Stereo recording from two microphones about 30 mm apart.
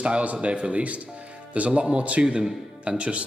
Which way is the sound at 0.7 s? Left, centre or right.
Right.